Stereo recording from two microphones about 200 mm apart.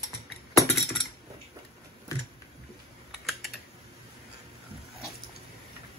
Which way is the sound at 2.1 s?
15° left (ahead or behind).